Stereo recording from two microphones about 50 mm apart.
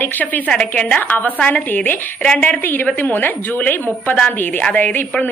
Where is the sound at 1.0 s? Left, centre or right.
Left.